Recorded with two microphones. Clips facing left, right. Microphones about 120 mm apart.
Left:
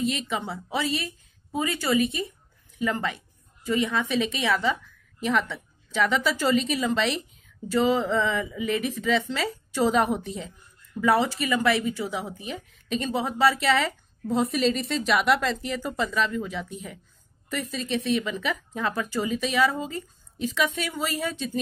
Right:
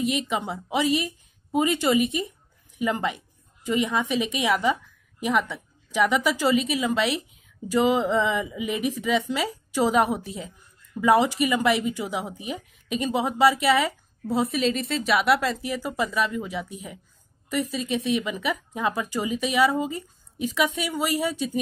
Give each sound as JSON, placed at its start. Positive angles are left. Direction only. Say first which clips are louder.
{"t": 0.0, "sound": "a woman's voice", "louder": "right 2 dB", "side_deg": -15}
{"t": 11.0, "sound": "a woman's voice", "louder": "right 3 dB", "side_deg": -15}